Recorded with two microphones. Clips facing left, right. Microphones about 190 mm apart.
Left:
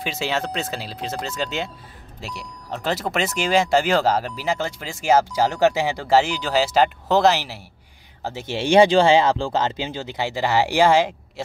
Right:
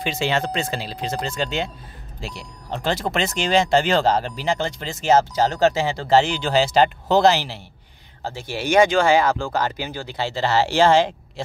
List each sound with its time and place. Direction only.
0.0 s speech: 5° left (ahead or behind)
8.2 s speech: 20° left (ahead or behind)